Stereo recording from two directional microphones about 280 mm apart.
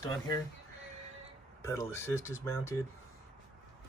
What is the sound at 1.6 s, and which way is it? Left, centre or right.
Speech, centre.